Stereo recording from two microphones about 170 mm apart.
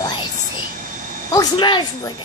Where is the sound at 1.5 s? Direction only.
30° left (ahead or behind).